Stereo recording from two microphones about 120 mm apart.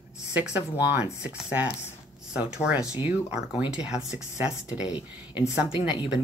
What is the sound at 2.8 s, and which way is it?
Speech, 30° left (ahead or behind).